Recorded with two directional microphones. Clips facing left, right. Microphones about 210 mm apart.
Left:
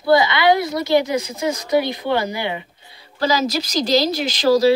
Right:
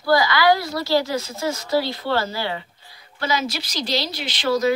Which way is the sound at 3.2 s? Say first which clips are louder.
Left 5 dB; 40° left (ahead or behind).